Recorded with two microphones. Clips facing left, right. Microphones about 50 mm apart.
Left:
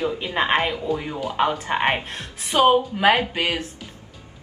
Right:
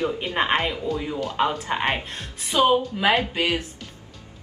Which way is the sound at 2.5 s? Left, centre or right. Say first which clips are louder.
Left 2 dB; left.